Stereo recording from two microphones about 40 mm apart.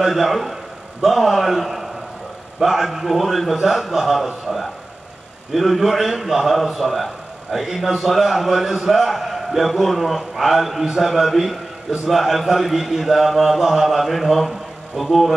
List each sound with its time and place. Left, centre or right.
0.0 s a man's voice: centre
4.5 s speech: centre
5.5 s a man's voice: centre